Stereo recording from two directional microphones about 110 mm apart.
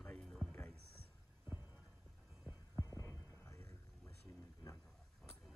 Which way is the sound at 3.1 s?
20° left (ahead or behind).